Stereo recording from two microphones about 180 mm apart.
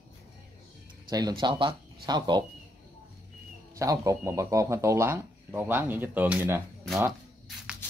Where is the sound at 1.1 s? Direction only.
25° right (ahead or behind).